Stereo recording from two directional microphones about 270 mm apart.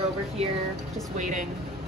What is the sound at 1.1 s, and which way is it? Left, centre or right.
Speech, right.